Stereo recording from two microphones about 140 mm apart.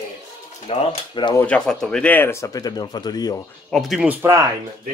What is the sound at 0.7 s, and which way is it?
Speech, 40° left (ahead or behind).